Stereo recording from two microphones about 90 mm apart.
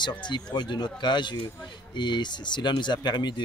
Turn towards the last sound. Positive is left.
turn(degrees=55)  # may be behind; listen again after turning